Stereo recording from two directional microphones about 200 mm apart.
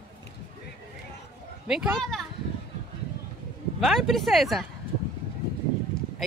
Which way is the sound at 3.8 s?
Centre (ahead or behind).